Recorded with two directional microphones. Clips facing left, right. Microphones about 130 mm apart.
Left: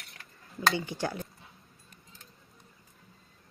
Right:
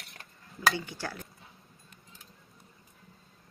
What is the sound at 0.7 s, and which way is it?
Speech, 20° left (ahead or behind).